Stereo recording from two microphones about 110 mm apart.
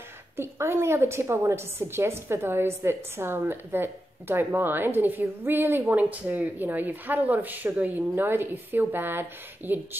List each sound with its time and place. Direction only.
0.4 s a woman's voice: 25° right (ahead or behind)